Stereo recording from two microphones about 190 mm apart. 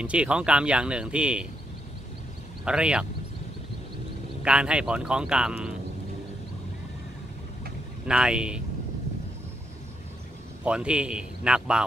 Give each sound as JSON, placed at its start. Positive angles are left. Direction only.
{"t": 0.0, "sound": "speech", "side_deg": -5}
{"t": 2.6, "sound": "speech", "side_deg": -5}
{"t": 4.5, "sound": "speech", "side_deg": -5}
{"t": 8.1, "sound": "speech", "side_deg": -5}
{"t": 10.6, "sound": "speech", "side_deg": -5}